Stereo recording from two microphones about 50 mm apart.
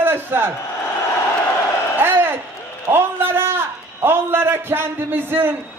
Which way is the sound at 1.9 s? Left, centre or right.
Right.